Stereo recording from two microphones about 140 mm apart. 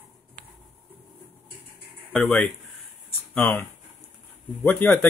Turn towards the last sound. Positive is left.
turn(degrees=10)  # may be behind; listen again after turning